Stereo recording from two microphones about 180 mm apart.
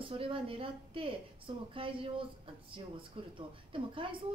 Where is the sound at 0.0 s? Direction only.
30° right (ahead or behind).